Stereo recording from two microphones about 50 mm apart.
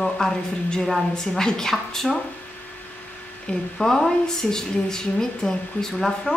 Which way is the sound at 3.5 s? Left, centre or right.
Centre.